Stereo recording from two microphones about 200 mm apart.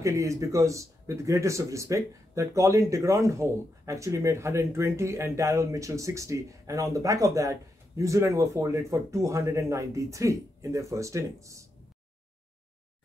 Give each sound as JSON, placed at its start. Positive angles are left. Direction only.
{"t": 0.0, "sound": "speech", "side_deg": -15}